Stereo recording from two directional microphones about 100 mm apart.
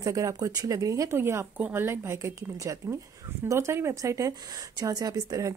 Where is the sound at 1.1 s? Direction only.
25° right (ahead or behind).